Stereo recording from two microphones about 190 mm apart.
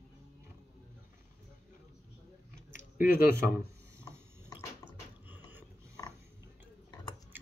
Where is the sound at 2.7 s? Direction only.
40° left (ahead or behind).